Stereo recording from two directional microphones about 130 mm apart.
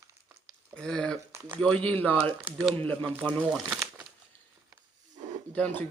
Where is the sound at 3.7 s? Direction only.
15° right (ahead or behind).